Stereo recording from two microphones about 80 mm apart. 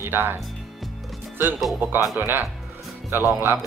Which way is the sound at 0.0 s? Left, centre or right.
Right.